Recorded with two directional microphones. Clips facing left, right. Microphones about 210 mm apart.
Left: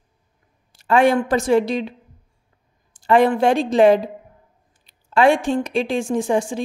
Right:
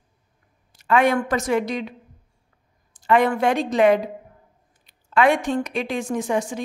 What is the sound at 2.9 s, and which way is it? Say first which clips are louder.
A woman's voice: left 3 dB; 30° left (ahead or behind).